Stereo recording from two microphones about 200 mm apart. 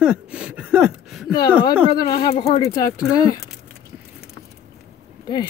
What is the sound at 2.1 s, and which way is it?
Speech, 30° left (ahead or behind).